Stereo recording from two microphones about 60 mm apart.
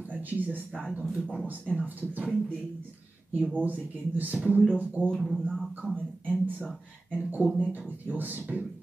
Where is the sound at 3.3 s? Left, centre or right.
Right.